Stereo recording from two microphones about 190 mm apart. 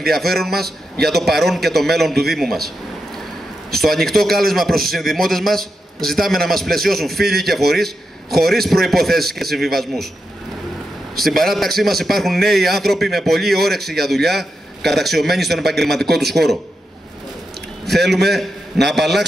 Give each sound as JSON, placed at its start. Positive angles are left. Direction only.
{"t": 0.1, "sound": "a man's voice", "side_deg": 0}
{"t": 0.5, "sound": "a man's voice", "side_deg": -55}
{"t": 1.0, "sound": "a man's voice", "side_deg": 0}
{"t": 3.7, "sound": "a man's voice", "side_deg": 0}
{"t": 11.2, "sound": "a man's voice", "side_deg": 0}
{"t": 16.2, "sound": "a man's voice", "side_deg": -60}
{"t": 17.8, "sound": "a man's voice", "side_deg": 0}